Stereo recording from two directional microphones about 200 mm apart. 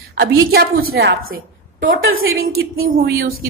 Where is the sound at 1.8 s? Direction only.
75° right (ahead or behind); by 3.0 s 90° right.